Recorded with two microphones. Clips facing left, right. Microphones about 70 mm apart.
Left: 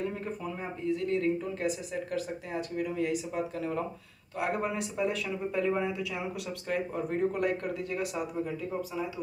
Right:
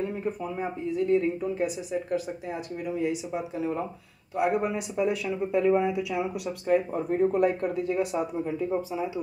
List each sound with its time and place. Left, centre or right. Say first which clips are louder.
0.1 s speech: right 5 dB; centre